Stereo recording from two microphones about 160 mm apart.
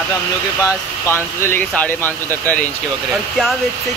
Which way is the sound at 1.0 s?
15° left (ahead or behind).